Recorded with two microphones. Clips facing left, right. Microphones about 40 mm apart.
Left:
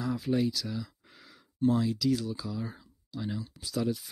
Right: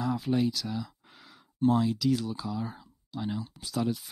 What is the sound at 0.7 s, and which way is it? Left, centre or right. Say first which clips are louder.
Speech: right 2 dB; centre.